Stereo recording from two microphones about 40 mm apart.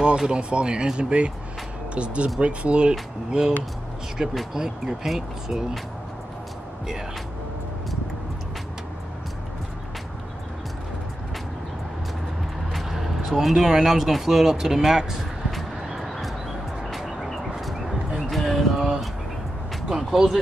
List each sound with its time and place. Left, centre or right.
0.3 s speech: right
5.0 s speech: centre
12.7 s speech: centre
16.0 s a sound: centre
18.8 s vehicle: centre
19.9 s music: centre